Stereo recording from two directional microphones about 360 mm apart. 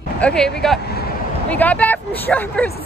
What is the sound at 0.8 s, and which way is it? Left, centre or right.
Speech, left.